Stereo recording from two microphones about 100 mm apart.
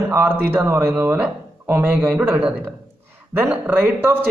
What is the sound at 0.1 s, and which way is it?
A man's voice, 20° right (ahead or behind).